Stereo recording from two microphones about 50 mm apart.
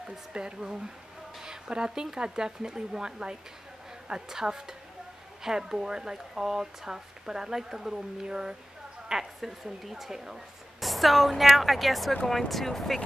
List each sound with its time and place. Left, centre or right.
0.3 s speech: centre